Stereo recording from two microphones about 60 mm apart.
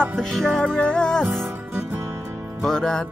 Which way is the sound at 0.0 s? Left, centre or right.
Centre.